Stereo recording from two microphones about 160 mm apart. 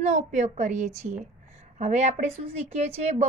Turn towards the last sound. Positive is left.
turn(degrees=-40)  # may be behind; listen again after turning